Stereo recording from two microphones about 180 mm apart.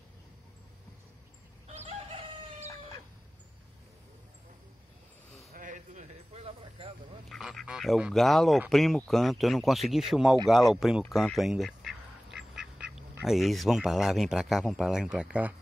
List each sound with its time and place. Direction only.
1.7 s chicken: 35° right (ahead or behind)
5.5 s sheep: 45° right (ahead or behind)
7.2 s speech: centre (ahead or behind)
10.5 s duck: centre (ahead or behind)
13.2 s speech: centre (ahead or behind)